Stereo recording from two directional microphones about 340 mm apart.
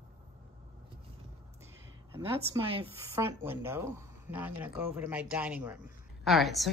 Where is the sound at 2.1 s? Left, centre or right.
Centre.